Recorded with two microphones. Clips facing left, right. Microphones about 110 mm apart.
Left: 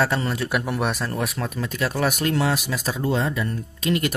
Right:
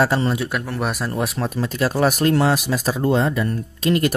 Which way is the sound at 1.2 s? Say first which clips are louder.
Right 4 dB; 30° right (ahead or behind).